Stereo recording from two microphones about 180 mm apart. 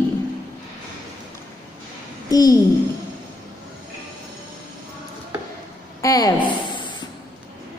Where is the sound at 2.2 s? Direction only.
20° left (ahead or behind).